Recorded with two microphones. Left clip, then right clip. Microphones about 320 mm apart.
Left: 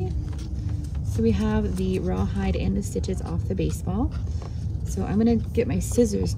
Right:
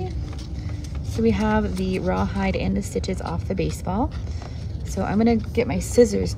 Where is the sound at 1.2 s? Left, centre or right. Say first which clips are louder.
Right 4 dB; centre.